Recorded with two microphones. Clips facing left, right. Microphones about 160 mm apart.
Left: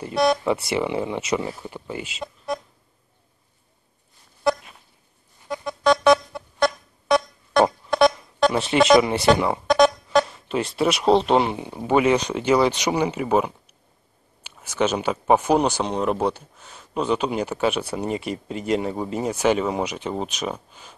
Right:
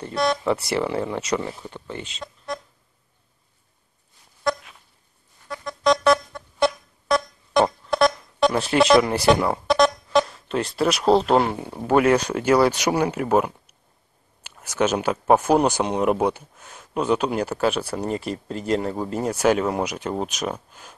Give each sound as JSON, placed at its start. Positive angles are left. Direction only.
{"t": 0.1, "sound": "speech", "side_deg": 15}
{"t": 0.5, "sound": "speech", "side_deg": 0}
{"t": 4.4, "sound": "a sound", "side_deg": 10}
{"t": 5.7, "sound": "music", "side_deg": 5}
{"t": 14.8, "sound": "speech", "side_deg": -5}